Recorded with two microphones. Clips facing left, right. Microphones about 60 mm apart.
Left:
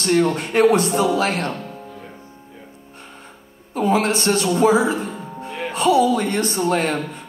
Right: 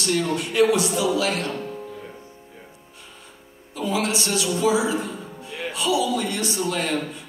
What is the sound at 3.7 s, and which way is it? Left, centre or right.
A man's voice, left.